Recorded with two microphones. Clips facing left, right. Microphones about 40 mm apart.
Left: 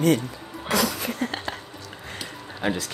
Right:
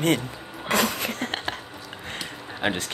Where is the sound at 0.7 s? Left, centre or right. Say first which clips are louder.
Right 1 dB; right.